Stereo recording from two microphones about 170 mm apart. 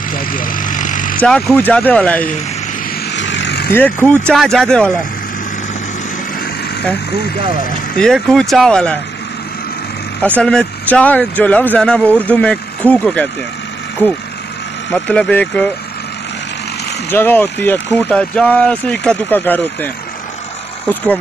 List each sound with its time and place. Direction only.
0.1 s vehicle: 55° left (ahead or behind)
1.2 s speech: 5° left (ahead or behind)
3.1 s vehicle: 90° left
3.7 s speech: 10° left (ahead or behind)
8.0 s speech: 5° left (ahead or behind)
10.4 s speech: 5° left (ahead or behind)
14.9 s speech: 5° left (ahead or behind)
17.1 s speech: 10° left (ahead or behind)
20.9 s speech: 10° left (ahead or behind)